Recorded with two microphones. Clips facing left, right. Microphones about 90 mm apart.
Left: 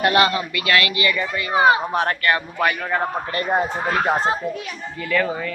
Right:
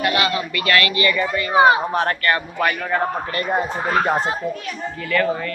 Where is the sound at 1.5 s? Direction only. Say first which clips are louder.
Right 2 dB; 5° right (ahead or behind).